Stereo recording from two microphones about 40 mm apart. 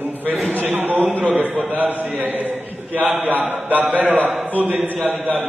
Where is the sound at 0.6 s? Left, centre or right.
Right.